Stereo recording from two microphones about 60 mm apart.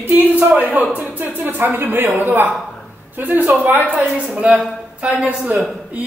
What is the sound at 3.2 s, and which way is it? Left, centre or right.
Speech, right.